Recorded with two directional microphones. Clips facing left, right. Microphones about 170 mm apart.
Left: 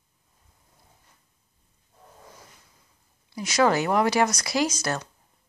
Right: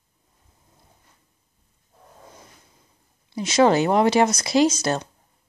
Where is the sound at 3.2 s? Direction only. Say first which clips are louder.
Right 4 dB; 25° right (ahead or behind).